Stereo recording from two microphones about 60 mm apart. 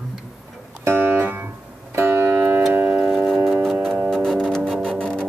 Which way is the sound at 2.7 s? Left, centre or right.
Right.